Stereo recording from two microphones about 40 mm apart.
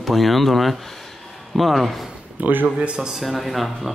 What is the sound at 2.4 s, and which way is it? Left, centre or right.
Speech, right.